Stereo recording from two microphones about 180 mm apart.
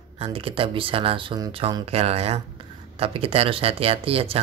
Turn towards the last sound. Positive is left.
turn(degrees=-30)  # may be behind; listen again after turning